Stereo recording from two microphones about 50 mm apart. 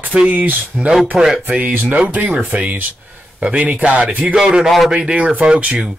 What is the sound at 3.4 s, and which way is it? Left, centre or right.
Speech, right.